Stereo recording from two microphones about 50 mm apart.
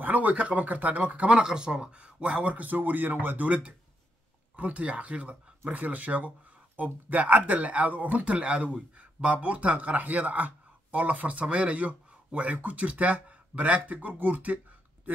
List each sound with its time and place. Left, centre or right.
0.0 s speech: right
1.4 s speech: centre; by 14.6 s right